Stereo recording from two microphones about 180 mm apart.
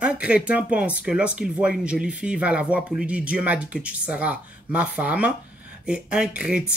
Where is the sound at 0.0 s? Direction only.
5° right (ahead or behind).